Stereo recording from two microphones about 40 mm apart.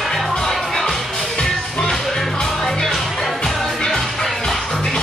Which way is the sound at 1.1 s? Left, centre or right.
Centre.